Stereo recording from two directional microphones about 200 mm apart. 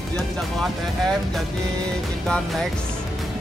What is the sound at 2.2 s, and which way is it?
Speech, centre (ahead or behind).